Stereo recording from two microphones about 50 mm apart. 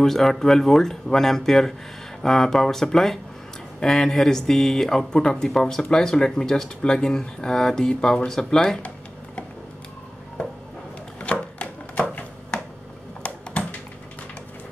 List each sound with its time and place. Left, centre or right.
0.0 s speech: centre
11.1 s chopping: left
13.2 s typing: left